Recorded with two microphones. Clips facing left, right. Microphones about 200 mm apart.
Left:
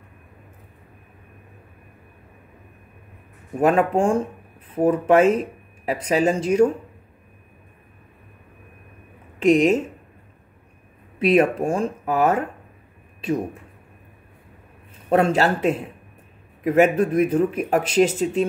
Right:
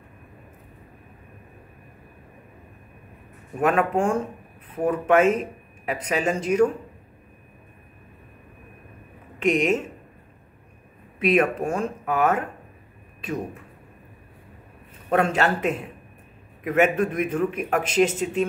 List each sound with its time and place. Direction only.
3.6 s speech: 30° left (ahead or behind)
9.4 s speech: 35° left (ahead or behind)
11.1 s speech: 30° left (ahead or behind)
15.0 s speech: 30° left (ahead or behind)